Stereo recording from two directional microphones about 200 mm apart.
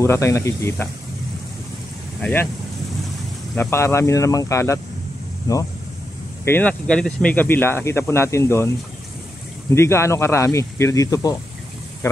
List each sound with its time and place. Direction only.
0.0 s speech: 15° left (ahead or behind)
3.5 s speech: 15° left (ahead or behind)